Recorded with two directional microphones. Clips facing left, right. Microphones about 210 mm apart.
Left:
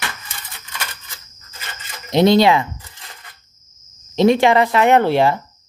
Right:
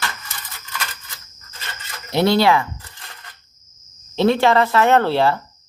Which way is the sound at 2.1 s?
20° left (ahead or behind).